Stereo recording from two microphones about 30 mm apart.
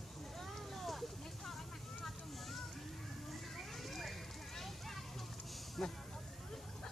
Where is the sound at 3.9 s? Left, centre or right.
Centre.